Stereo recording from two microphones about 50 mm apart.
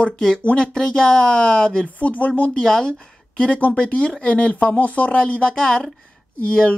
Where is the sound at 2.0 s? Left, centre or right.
Left.